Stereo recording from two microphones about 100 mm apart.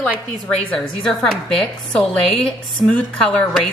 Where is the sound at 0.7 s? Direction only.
5° left (ahead or behind).